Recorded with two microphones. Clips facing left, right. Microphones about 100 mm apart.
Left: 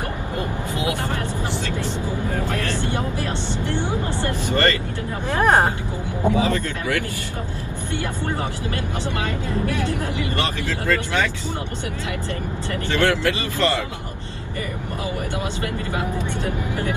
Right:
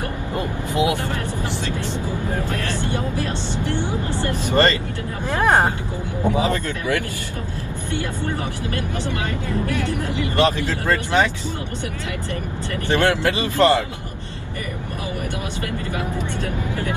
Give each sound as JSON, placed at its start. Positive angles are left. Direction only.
{"t": 2.8, "sound": "vehicle", "side_deg": 20}
{"t": 4.3, "sound": "vehicle", "side_deg": -20}
{"t": 5.3, "sound": "vehicle", "side_deg": 15}
{"t": 6.3, "sound": "speech", "side_deg": -20}
{"t": 9.5, "sound": "speech", "side_deg": 20}
{"t": 10.2, "sound": "speech", "side_deg": -20}
{"t": 12.9, "sound": "speech", "side_deg": -20}
{"t": 15.6, "sound": "speech", "side_deg": 20}